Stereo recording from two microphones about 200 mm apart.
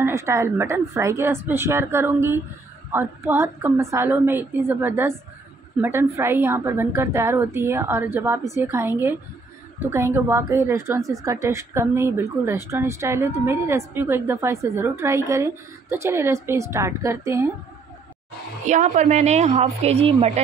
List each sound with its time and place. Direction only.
0.0 s a woman's voice: 15° right (ahead or behind)
18.7 s a woman's voice: 35° right (ahead or behind)